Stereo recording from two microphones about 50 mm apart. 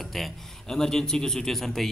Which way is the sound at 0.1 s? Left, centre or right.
Centre.